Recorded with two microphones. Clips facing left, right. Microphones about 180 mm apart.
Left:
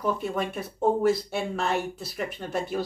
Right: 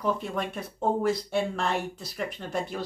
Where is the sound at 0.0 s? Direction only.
5° left (ahead or behind).